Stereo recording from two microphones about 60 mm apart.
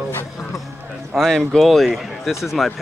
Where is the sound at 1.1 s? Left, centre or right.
Centre.